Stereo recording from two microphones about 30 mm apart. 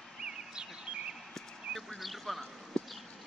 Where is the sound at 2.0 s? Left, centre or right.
Centre.